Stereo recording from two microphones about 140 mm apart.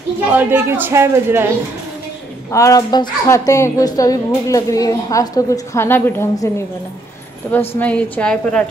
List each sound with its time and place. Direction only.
0.2 s a man's voice: 15° right (ahead or behind)
2.5 s a woman's voice: 25° left (ahead or behind)
7.8 s a woman's voice: 10° left (ahead or behind)